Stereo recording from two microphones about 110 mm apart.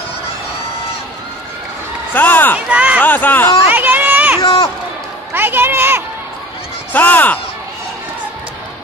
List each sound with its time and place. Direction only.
2.1 s speech: 15° left (ahead or behind)
2.7 s speech: 10° right (ahead or behind)
3.0 s speech: 15° left (ahead or behind)
3.7 s a sound: 15° right (ahead or behind)
4.4 s run: 45° left (ahead or behind)
5.3 s a sound: 20° right (ahead or behind)
6.9 s speech: 15° left (ahead or behind)